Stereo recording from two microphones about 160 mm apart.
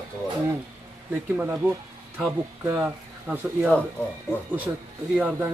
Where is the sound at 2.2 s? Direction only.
10° right (ahead or behind).